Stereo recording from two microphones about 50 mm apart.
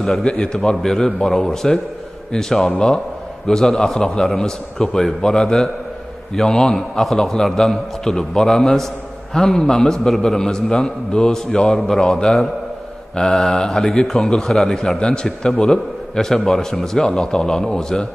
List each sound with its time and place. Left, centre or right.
0.0 s a man's voice: centre